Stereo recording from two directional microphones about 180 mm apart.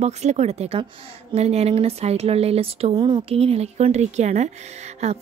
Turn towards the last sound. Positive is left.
turn(degrees=-40)  # may be behind; listen again after turning